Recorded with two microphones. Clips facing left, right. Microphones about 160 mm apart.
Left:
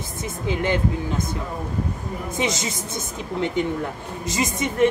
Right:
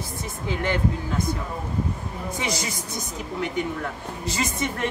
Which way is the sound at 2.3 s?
20° left (ahead or behind).